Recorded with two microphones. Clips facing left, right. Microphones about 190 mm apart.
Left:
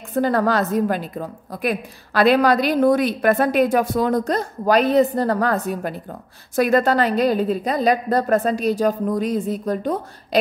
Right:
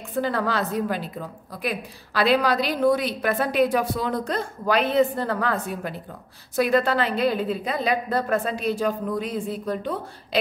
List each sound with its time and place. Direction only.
0.1 s a woman's voice: 45° left (ahead or behind)